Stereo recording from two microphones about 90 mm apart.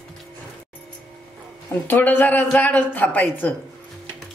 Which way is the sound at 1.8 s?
20° left (ahead or behind).